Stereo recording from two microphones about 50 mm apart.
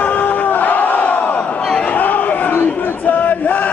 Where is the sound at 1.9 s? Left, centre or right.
Left.